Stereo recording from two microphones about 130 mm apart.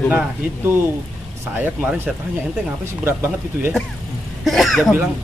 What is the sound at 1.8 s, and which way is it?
Speech, 10° right (ahead or behind).